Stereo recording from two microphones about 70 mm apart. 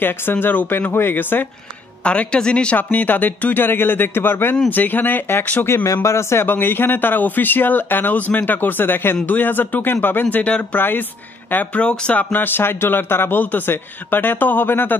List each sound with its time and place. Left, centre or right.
0.0 s a man's voice: left
2.0 s a man's voice: centre
6.0 s a man's voice: left
10.3 s a man's voice: centre